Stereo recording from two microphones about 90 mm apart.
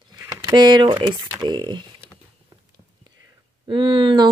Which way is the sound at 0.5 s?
60° right (ahead or behind).